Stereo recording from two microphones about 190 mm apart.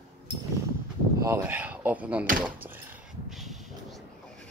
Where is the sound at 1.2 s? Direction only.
10° right (ahead or behind).